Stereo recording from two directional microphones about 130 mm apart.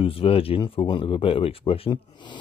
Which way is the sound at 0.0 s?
45° left (ahead or behind).